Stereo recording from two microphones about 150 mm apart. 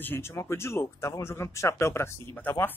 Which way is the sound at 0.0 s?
15° left (ahead or behind).